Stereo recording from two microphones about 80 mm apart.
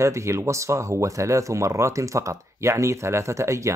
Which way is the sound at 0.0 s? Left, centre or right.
Right.